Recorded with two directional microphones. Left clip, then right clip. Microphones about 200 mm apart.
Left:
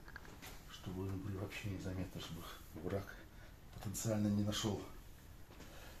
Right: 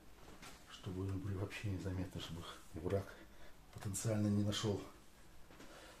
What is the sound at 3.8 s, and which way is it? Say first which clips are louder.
Speech: left 1 dB; 25° right (ahead or behind).